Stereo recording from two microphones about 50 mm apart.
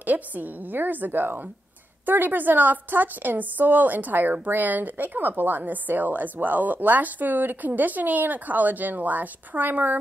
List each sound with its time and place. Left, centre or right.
0.0 s a woman's voice: right